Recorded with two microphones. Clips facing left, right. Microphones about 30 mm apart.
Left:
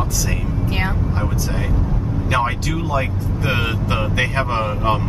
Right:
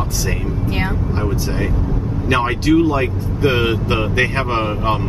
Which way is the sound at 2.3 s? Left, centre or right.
Right.